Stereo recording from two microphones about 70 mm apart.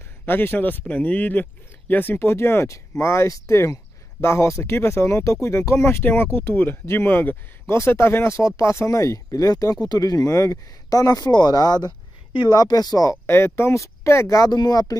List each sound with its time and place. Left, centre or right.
0.2 s speech: left
6.0 s speech: left
13.3 s speech: left
14.5 s speech: left